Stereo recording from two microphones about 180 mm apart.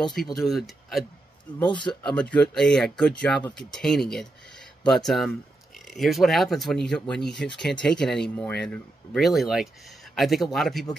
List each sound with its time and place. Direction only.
0.0 s speech: centre (ahead or behind)
1.7 s speech: 25° left (ahead or behind)
2.0 s speech: 5° left (ahead or behind)